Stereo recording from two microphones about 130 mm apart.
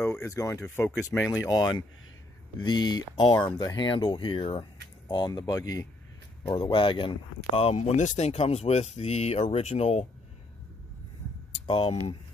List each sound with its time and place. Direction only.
0.0 s speech: 20° left (ahead or behind)
1.3 s speech: 30° left (ahead or behind); by 10.0 s 55° left (ahead or behind)
11.6 s speech: 40° left (ahead or behind)